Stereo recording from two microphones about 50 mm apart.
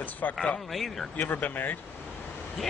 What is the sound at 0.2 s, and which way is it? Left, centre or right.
Speech, left.